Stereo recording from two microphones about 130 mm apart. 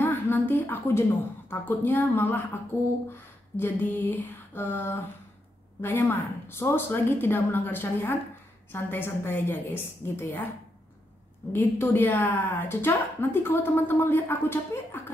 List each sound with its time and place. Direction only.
0.0 s a woman's voice: 15° left (ahead or behind)
11.5 s a woman's voice: 15° left (ahead or behind)